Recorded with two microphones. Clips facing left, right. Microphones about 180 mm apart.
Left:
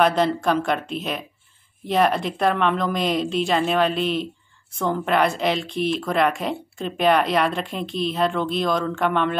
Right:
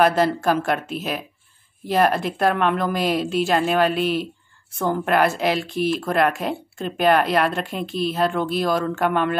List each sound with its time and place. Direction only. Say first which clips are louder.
0.0 s speech: right 1 dB; 5° right (ahead or behind)